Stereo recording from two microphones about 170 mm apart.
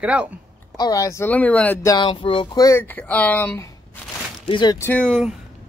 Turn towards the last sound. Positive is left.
turn(degrees=0)  # may be behind; listen again after turning